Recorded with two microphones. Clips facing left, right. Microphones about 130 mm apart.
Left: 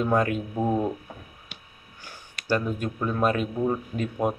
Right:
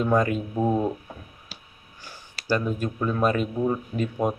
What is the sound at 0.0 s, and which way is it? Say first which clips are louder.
Speech: right 1 dB; 5° left (ahead or behind).